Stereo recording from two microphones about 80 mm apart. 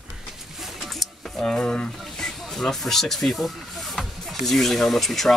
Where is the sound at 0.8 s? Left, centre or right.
Centre.